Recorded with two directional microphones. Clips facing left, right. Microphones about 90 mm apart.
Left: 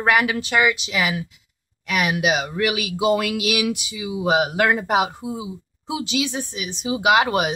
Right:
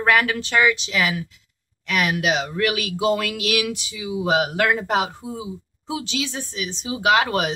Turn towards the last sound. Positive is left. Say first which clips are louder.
# left 1 dB
turn(degrees=15)  # may be behind; listen again after turning